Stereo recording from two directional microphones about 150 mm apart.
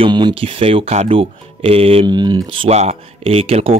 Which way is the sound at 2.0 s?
30° right (ahead or behind).